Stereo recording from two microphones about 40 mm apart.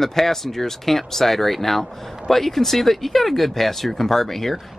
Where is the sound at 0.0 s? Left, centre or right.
Centre.